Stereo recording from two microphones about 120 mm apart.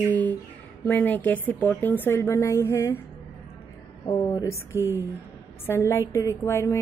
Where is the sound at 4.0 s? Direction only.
30° left (ahead or behind).